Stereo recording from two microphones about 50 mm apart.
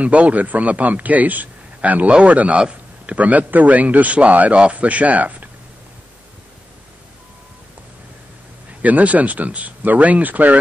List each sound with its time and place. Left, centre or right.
0.0 s a man's voice: right
8.8 s a man's voice: right